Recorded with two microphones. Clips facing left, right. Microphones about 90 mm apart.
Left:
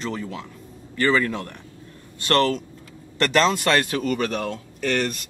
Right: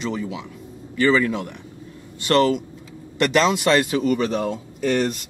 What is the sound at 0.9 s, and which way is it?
Speech, 15° right (ahead or behind).